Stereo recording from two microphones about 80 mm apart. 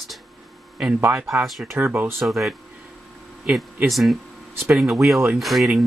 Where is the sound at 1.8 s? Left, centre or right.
Right.